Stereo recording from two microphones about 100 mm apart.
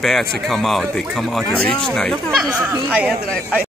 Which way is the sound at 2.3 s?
10° right (ahead or behind).